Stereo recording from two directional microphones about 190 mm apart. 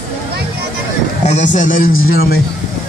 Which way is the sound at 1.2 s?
40° left (ahead or behind).